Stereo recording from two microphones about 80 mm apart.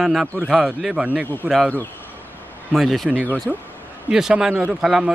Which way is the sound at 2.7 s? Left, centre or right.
Centre.